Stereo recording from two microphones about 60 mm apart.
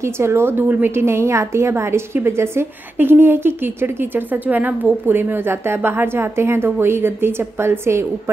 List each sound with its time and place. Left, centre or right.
0.0 s a woman's voice: right
0.9 s a woman's voice: right